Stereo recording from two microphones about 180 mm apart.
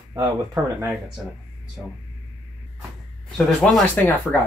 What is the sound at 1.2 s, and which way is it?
Speech, 5° right (ahead or behind).